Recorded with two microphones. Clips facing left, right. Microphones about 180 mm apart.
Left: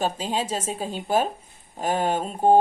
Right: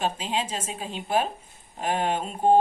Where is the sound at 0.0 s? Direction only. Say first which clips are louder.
Left 2 dB; 40° left (ahead or behind).